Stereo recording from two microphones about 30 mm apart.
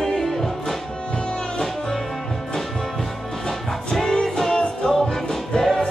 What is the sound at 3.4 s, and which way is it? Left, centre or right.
Music, centre.